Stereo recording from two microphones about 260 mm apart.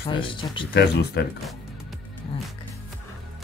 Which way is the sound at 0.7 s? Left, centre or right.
Left.